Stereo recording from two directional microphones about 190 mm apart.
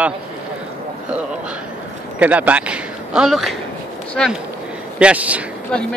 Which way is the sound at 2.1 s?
10° right (ahead or behind).